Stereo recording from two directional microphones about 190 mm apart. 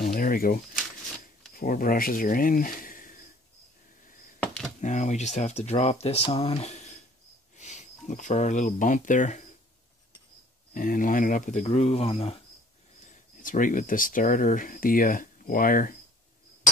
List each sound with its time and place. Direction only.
0.0 s a sound: 50° left (ahead or behind)
1.5 s speech: 50° left (ahead or behind)
4.0 s a sound: 45° left (ahead or behind)
4.8 s speech: 40° left (ahead or behind)
10.7 s speech: 45° left (ahead or behind); by 12.4 s 30° left (ahead or behind)
13.0 s speech: 40° left (ahead or behind)